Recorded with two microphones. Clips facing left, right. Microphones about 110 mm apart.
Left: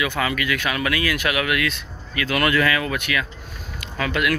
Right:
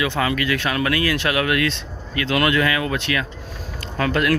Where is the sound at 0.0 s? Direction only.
30° right (ahead or behind).